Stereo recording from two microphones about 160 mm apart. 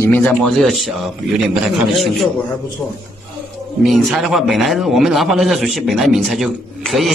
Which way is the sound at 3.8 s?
Centre (ahead or behind).